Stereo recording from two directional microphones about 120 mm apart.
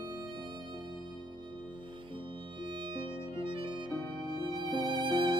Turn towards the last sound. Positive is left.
turn(degrees=-40)  # may be behind; listen again after turning